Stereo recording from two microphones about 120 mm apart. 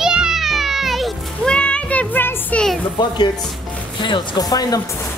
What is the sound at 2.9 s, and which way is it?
Speech, 40° left (ahead or behind).